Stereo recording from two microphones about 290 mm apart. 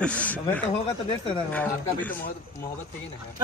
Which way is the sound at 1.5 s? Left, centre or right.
Centre.